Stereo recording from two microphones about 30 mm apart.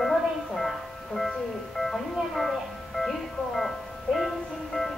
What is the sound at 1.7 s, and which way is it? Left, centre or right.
Music, centre.